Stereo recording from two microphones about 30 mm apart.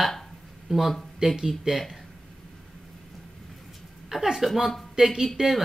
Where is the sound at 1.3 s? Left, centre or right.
Centre.